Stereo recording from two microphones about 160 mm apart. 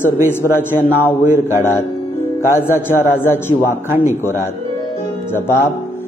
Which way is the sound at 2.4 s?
15° left (ahead or behind).